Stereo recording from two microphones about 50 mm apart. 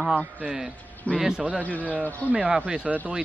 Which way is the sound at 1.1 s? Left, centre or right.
Left.